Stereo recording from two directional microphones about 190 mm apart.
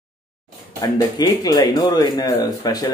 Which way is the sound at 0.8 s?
20° left (ahead or behind).